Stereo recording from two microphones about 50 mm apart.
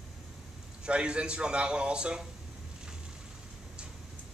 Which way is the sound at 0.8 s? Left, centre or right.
Centre.